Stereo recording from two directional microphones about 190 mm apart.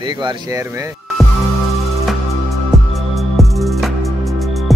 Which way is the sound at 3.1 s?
Centre (ahead or behind).